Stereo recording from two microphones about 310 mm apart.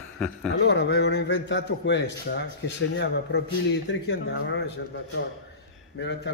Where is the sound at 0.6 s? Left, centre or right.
Left.